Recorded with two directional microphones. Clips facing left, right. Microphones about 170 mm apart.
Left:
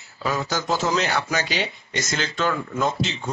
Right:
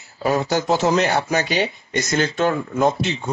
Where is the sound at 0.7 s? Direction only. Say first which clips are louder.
Right 4 dB; 60° right (ahead or behind).